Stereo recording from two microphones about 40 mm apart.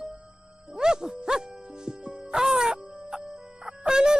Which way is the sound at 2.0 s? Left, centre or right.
Right.